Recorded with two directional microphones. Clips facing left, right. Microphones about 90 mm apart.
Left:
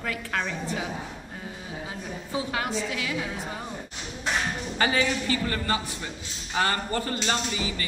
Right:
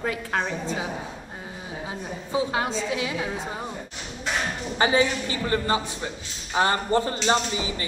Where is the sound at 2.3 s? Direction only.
25° right (ahead or behind).